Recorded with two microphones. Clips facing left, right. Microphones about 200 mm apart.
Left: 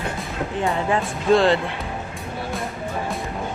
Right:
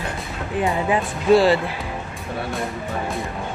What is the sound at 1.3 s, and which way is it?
Speech, 5° right (ahead or behind).